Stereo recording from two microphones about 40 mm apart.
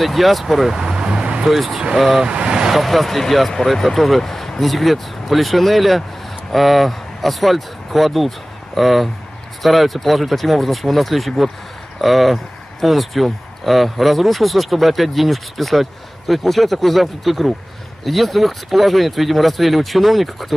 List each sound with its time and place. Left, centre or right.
0.0 s speech: centre
0.7 s vehicle: centre
1.5 s speech: centre
2.2 s speech: right
2.7 s speech: centre